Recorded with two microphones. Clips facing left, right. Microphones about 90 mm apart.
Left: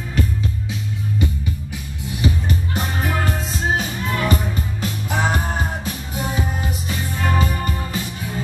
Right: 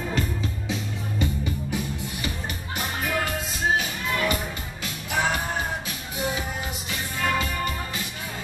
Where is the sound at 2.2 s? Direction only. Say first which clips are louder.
Left 9 dB; 35° left (ahead or behind).